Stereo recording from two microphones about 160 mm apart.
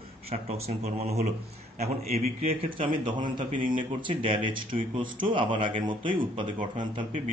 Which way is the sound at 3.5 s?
55° right (ahead or behind).